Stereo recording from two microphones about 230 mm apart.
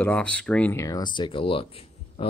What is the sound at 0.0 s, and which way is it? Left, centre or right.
Speech, centre.